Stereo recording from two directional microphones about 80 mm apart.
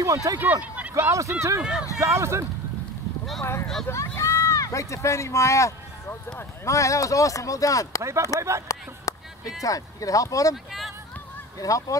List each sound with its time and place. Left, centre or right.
0.0 s speech: right
0.4 s speech: right
0.9 s speech: right
1.6 s speech: centre
2.0 s speech: right
3.9 s speech: left
8.0 s speech: right
8.6 s speech: left
11.6 s speech: left